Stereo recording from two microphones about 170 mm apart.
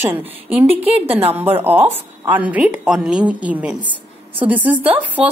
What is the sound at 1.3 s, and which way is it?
A woman's voice, 10° right (ahead or behind).